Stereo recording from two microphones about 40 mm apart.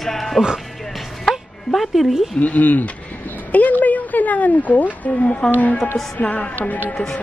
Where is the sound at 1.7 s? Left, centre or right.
Centre.